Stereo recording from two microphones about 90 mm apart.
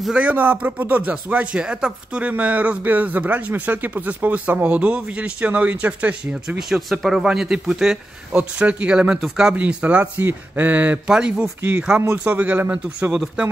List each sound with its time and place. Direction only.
0.2 s speech: 15° right (ahead or behind)
6.7 s speech: centre (ahead or behind)
12.0 s a man's voice: 25° right (ahead or behind)